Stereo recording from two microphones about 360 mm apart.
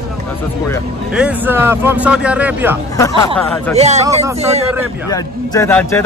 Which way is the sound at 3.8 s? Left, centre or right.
Centre.